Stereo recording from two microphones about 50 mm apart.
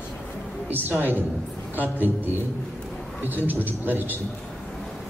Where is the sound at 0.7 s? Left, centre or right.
Right.